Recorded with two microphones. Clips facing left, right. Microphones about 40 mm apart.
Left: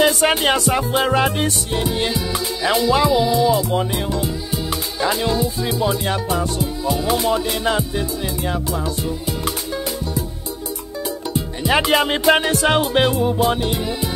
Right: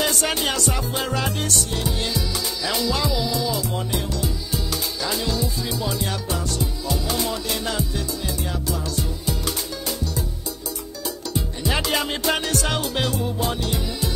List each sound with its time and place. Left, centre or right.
0.2 s music: left
11.3 s music: left